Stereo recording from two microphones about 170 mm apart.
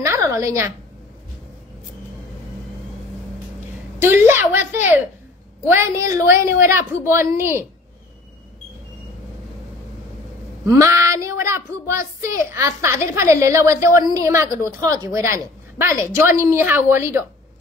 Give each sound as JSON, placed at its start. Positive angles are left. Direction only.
{"t": 0.0, "sound": "a sound", "side_deg": -15}
{"t": 4.0, "sound": "a woman's voice", "side_deg": -10}
{"t": 10.8, "sound": "a woman's voice", "side_deg": -15}